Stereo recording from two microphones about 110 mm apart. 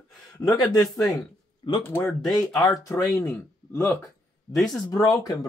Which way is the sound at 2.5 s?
35° left (ahead or behind).